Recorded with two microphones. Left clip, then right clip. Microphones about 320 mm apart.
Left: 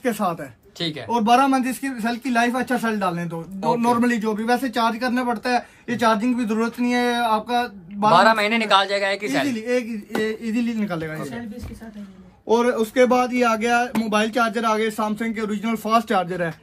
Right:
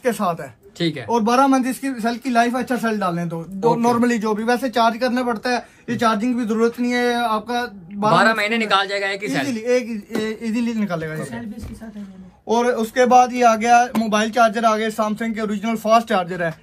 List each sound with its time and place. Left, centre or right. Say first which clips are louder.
0.0 s speech: right 3 dB; right
0.7 s a man's voice: right 4 dB; centre
1.1 s a man's voice: right 1 dB; centre
8.1 s a man's voice: left 1 dB; centre
9.5 s speech: right 4 dB; centre
12.4 s speech: even; right